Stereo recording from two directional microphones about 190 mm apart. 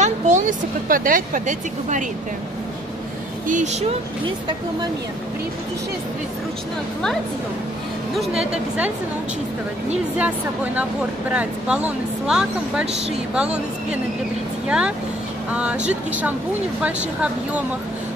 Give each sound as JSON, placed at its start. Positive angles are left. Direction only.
{"t": 0.0, "sound": "speech", "side_deg": -40}
{"t": 3.4, "sound": "speech", "side_deg": -40}
{"t": 8.2, "sound": "a woman's voice", "side_deg": -5}
{"t": 10.1, "sound": "a woman's voice", "side_deg": -10}